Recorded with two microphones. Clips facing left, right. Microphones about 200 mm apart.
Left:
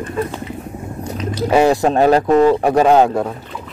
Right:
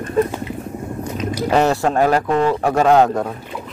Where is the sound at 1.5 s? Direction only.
10° left (ahead or behind).